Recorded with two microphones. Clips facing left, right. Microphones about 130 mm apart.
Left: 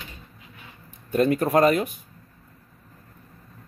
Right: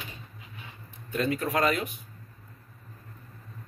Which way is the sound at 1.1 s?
45° left (ahead or behind).